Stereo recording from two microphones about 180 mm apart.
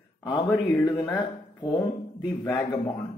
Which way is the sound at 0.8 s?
20° left (ahead or behind).